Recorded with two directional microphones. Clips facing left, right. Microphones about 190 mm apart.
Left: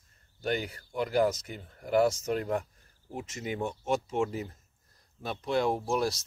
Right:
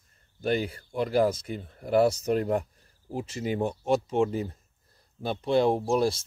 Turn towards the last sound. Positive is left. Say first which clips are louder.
# right 5 dB
turn(degrees=-25)  # may be behind; listen again after turning